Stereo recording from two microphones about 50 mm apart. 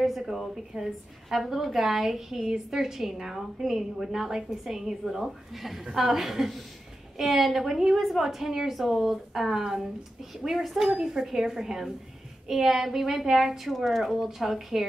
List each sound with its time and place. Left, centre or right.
0.0 s a woman's voice: centre